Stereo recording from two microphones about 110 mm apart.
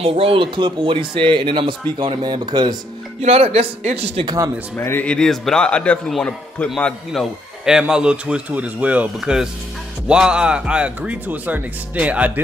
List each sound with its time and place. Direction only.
0.0 s speech: 60° right (ahead or behind); by 2.8 s 40° right (ahead or behind)
3.2 s speech: 65° right (ahead or behind)
4.7 s a man's voice: 20° left (ahead or behind)
7.1 s speech: 5° right (ahead or behind)